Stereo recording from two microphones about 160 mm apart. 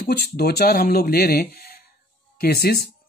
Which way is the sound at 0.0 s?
85° left.